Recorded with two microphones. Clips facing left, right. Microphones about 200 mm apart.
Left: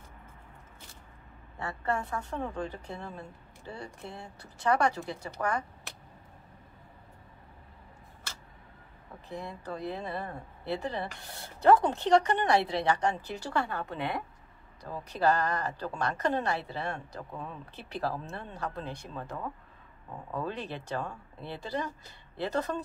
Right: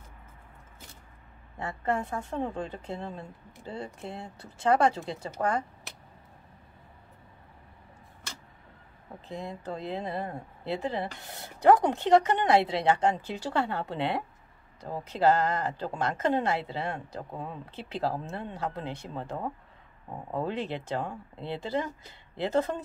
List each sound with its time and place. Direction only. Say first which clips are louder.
1.6 s speech: right 2 dB; 20° right (ahead or behind)
9.3 s speech: right 2 dB; 25° right (ahead or behind)